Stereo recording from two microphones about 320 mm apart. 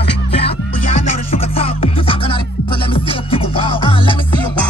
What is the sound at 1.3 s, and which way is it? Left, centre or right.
Music, centre.